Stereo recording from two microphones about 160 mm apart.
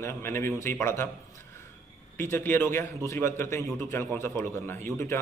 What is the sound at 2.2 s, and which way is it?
A man's voice, 15° left (ahead or behind).